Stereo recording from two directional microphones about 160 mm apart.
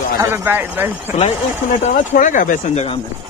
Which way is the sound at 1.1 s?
45° left (ahead or behind).